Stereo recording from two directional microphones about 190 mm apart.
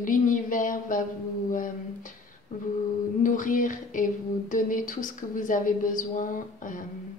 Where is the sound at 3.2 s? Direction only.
45° left (ahead or behind).